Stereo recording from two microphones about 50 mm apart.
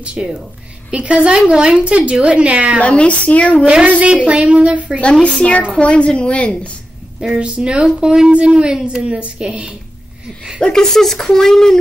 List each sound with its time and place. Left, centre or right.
0.0 s speech: centre
2.8 s a woman's voice: left
4.3 s speech: right
5.0 s a woman's voice: left
7.2 s speech: centre
10.6 s speech: centre